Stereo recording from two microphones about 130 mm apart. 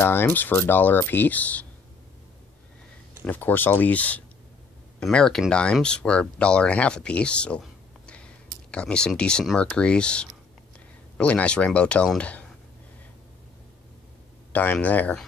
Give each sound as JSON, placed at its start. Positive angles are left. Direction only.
{"t": 0.0, "sound": "speech", "side_deg": 15}
{"t": 3.3, "sound": "speech", "side_deg": 15}
{"t": 14.5, "sound": "speech", "side_deg": 10}